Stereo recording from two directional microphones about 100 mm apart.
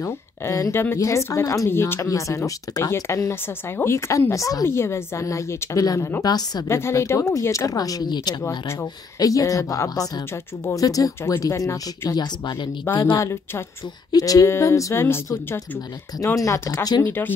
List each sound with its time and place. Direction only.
0.0 s speech: 30° left (ahead or behind)
6.7 s speech: 25° left (ahead or behind)
14.1 s speech: 35° left (ahead or behind); by 17.3 s 20° left (ahead or behind)